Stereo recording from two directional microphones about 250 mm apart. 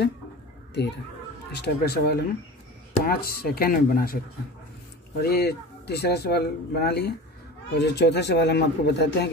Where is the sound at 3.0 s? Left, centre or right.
Left.